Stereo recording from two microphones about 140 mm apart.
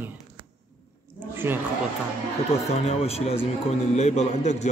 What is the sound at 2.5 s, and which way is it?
Speech, 45° left (ahead or behind).